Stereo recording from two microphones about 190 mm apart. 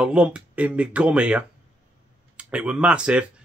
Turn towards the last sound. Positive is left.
turn(degrees=-5)  # may be behind; listen again after turning